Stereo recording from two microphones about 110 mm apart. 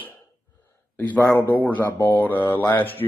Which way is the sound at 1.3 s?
20° left (ahead or behind).